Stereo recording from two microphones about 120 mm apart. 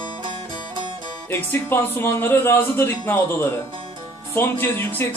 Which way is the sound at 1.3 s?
20° left (ahead or behind).